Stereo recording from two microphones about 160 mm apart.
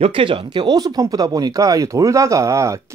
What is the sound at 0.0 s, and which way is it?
Speech, 35° right (ahead or behind).